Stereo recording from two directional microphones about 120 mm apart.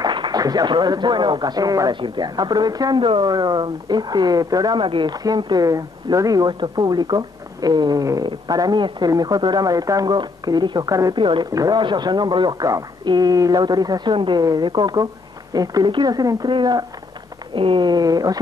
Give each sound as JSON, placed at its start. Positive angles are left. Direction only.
{"t": 0.0, "sound": "speech", "side_deg": -40}
{"t": 11.1, "sound": "speech", "side_deg": -45}